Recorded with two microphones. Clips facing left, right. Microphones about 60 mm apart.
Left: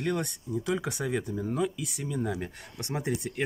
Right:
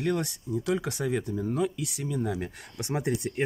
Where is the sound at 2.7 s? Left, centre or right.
Centre.